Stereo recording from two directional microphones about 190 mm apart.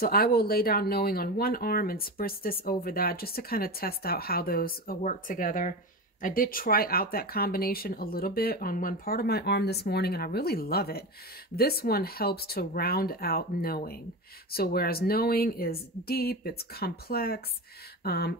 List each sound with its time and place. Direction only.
0.0 s speech: 50° left (ahead or behind)